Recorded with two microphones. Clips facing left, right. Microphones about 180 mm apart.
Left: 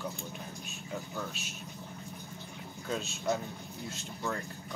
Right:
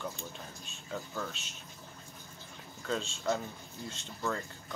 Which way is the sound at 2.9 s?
10° left (ahead or behind).